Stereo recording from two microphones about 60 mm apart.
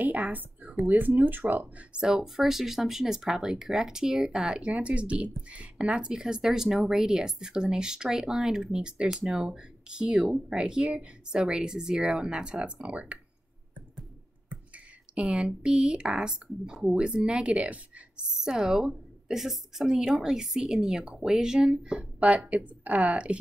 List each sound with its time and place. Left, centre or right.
0.0 s speech: right
2.0 s speech: centre
15.1 s speech: centre
18.4 s a woman's voice: centre